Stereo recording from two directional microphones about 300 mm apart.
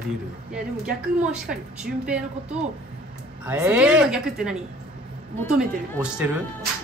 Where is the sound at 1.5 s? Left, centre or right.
Centre.